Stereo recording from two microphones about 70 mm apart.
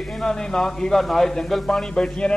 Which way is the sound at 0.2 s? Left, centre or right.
Centre.